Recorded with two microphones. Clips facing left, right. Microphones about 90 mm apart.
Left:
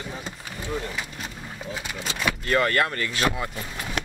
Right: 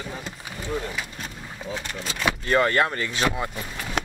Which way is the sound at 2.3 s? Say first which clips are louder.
Right 2 dB; 25° right (ahead or behind).